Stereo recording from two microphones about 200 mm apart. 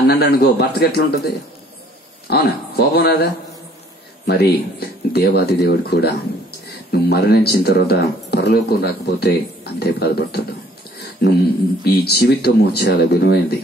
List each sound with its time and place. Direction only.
0.1 s speech: 55° left (ahead or behind)
4.3 s speech: 55° left (ahead or behind)
11.8 s speech: 50° left (ahead or behind)